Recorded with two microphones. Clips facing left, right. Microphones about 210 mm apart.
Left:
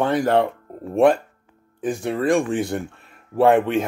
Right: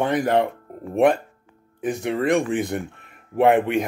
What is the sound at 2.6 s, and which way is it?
Speech, 20° right (ahead or behind).